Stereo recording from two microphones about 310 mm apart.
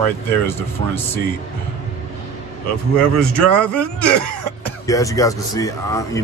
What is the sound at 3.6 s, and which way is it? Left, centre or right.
A man's voice, centre.